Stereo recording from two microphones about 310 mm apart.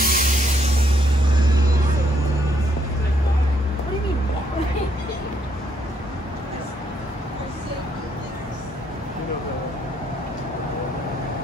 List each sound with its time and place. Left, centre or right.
0.0 s music: right